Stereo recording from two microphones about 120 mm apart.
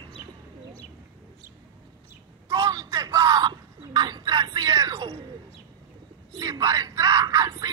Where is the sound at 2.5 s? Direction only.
30° right (ahead or behind).